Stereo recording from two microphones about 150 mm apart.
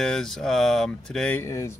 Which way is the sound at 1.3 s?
20° left (ahead or behind).